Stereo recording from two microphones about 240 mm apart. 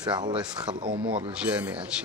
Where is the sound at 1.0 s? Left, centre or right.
Right.